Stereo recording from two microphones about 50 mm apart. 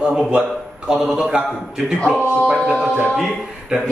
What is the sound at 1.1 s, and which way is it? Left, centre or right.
Speech, centre.